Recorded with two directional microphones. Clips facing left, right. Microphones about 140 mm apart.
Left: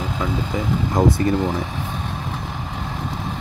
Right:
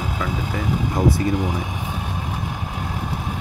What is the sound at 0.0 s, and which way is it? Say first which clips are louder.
Vehicle: left 2 dB; 10° right (ahead or behind).